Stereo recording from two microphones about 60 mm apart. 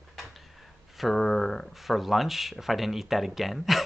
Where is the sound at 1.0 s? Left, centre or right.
Centre.